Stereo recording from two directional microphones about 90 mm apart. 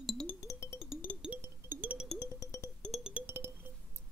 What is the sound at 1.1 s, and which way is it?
Music, 15° left (ahead or behind).